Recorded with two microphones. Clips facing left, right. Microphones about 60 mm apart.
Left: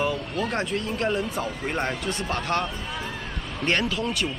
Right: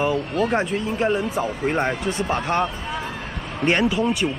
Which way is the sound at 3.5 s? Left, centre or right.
Centre.